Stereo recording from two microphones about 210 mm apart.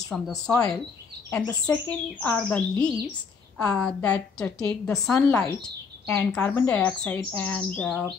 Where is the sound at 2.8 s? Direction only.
20° left (ahead or behind).